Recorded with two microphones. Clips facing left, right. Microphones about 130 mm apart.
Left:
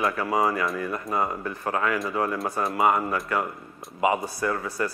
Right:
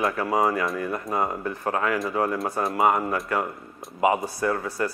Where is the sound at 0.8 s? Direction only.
25° right (ahead or behind).